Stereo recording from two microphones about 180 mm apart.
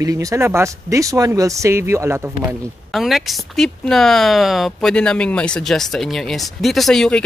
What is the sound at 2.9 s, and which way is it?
Speech, centre (ahead or behind).